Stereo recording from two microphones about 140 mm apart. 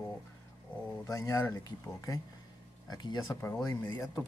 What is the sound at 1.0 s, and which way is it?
Speech, 20° left (ahead or behind).